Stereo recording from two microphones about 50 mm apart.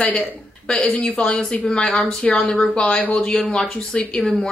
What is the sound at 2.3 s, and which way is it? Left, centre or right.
Speech, left.